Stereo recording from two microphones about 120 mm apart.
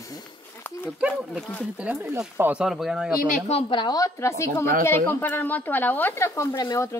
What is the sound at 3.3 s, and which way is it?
A woman's voice, 55° left (ahead or behind).